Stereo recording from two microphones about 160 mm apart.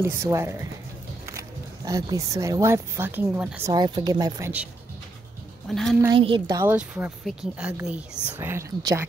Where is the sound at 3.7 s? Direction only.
25° right (ahead or behind).